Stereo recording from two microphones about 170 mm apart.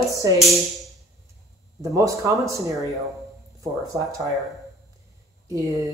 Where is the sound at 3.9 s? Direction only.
20° right (ahead or behind).